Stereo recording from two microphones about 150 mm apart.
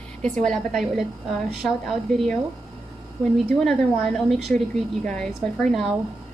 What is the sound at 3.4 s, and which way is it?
Speech, 5° left (ahead or behind).